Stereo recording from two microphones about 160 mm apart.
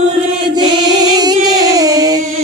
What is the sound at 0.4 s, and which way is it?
Singing, 30° right (ahead or behind).